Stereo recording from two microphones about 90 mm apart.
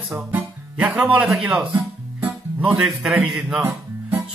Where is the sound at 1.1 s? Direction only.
5° right (ahead or behind).